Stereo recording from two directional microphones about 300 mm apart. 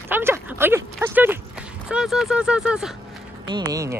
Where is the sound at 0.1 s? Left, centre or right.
Centre.